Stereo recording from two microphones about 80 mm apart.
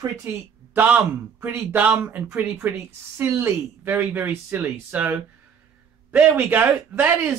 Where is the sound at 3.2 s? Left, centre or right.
Right.